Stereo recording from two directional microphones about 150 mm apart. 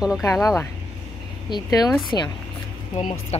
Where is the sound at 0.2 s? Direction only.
20° left (ahead or behind).